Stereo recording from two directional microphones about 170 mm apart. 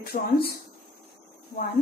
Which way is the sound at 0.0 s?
65° left (ahead or behind).